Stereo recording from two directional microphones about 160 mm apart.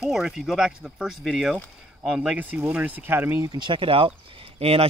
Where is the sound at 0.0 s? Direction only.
Centre (ahead or behind).